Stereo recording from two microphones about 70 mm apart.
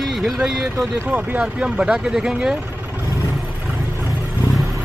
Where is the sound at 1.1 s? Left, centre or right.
Right.